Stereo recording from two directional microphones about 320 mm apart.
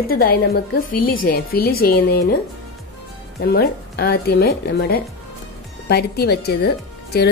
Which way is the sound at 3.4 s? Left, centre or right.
Left.